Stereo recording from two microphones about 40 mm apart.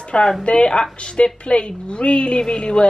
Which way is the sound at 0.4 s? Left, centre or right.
Left.